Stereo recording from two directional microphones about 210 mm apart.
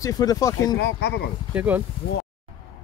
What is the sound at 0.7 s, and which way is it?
Speech, 55° left (ahead or behind).